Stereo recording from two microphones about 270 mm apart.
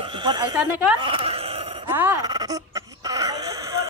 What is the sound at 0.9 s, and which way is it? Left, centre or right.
Wail, centre.